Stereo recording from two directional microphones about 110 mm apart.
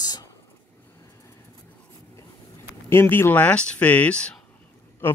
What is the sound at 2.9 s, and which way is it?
Speech, 20° left (ahead or behind).